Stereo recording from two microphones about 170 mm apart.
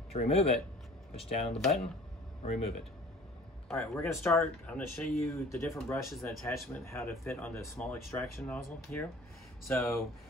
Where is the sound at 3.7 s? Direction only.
15° left (ahead or behind).